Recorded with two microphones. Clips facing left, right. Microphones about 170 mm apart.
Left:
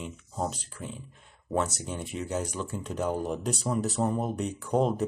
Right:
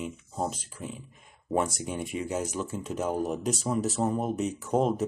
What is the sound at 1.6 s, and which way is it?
Speech, 10° right (ahead or behind).